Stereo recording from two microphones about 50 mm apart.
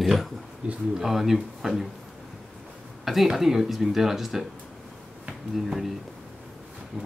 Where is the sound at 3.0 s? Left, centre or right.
Centre.